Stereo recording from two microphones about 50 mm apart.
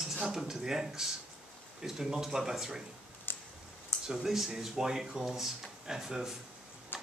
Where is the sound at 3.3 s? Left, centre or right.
Left.